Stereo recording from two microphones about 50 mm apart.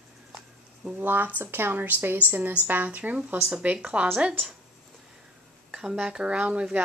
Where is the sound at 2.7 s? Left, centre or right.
Right.